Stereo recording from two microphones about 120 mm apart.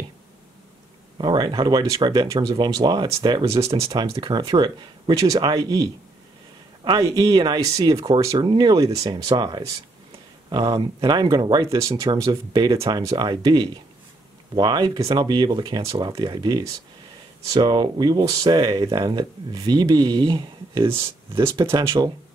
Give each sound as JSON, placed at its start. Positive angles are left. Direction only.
{"t": 1.1, "sound": "speech", "side_deg": -40}
{"t": 3.4, "sound": "speech", "side_deg": -25}
{"t": 4.0, "sound": "speech", "side_deg": -35}
{"t": 7.0, "sound": "speech", "side_deg": -30}
{"t": 21.6, "sound": "speech", "side_deg": -30}